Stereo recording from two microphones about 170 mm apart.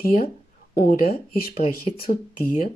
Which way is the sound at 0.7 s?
60° left (ahead or behind).